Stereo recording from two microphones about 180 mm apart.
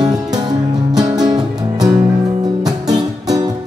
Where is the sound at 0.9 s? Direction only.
20° right (ahead or behind).